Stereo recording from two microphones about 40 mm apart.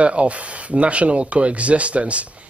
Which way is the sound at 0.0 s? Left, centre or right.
Right.